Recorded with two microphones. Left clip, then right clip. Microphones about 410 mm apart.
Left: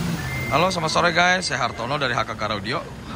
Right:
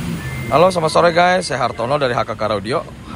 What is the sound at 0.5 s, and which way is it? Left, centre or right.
A man's voice, centre.